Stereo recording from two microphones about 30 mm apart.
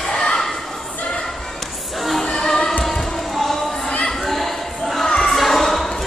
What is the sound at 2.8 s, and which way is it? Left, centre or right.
Music, centre.